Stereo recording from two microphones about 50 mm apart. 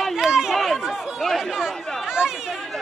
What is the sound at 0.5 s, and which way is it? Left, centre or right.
Chatter, centre.